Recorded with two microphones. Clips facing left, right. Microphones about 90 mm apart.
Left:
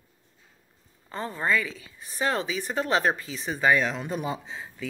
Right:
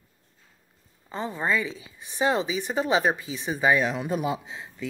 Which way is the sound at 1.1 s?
10° right (ahead or behind).